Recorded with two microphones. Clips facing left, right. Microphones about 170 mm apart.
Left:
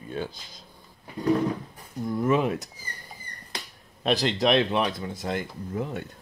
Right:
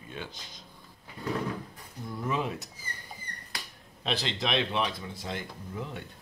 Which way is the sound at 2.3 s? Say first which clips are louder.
Left 8 dB; 55° left (ahead or behind).